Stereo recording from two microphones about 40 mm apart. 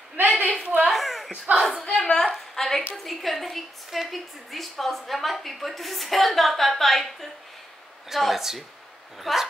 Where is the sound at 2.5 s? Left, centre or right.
Centre.